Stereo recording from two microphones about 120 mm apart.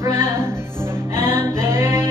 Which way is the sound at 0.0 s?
20° right (ahead or behind).